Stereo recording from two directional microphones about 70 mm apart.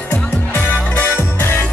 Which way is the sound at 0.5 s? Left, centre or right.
Left.